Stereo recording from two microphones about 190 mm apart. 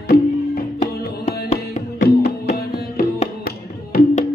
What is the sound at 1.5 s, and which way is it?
Music, 40° left (ahead or behind).